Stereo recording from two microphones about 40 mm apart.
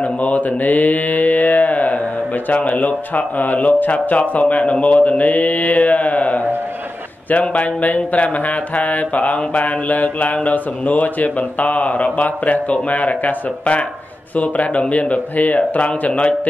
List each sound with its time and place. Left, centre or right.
0.2 s mantra: left
2.5 s speech: left